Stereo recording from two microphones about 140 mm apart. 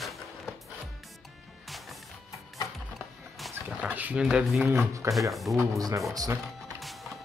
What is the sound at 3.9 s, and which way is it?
Speech, 10° right (ahead or behind).